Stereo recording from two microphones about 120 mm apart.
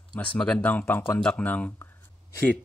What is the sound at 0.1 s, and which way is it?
Speech, 10° left (ahead or behind).